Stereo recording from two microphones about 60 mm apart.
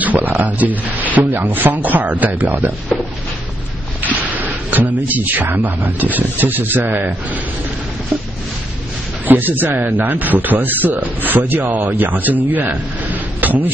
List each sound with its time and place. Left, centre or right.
0.0 s a sound: right
0.3 s a man's voice: right
4.3 s a man's voice: right
9.2 s a man's voice: right